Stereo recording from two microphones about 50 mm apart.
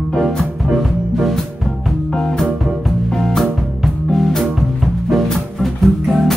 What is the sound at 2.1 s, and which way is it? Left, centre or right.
Music, centre.